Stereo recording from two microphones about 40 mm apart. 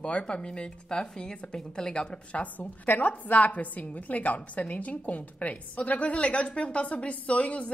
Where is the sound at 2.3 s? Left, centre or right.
Left.